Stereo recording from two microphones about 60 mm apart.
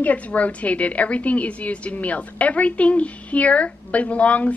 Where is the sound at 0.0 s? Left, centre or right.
Left.